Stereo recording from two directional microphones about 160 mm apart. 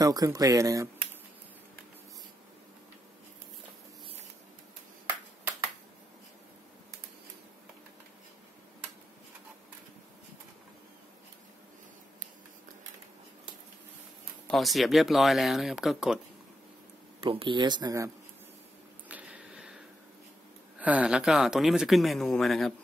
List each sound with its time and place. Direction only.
0.0 s speech: 25° right (ahead or behind)
14.5 s speech: centre (ahead or behind)
17.2 s speech: 35° right (ahead or behind)
19.0 s a sound: 10° right (ahead or behind)
20.8 s speech: 10° right (ahead or behind)